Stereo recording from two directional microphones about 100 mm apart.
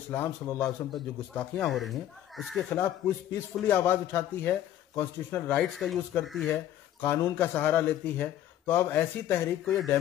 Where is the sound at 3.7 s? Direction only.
20° left (ahead or behind).